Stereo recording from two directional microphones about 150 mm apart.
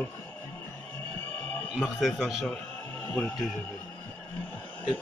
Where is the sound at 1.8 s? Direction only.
Centre (ahead or behind).